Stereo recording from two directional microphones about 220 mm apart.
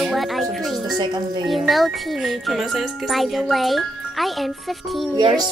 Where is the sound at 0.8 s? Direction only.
20° right (ahead or behind).